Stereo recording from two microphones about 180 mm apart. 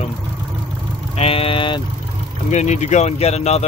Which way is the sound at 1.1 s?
35° left (ahead or behind).